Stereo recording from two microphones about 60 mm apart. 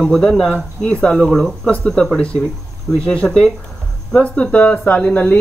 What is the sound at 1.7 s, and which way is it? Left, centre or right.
Speech, centre.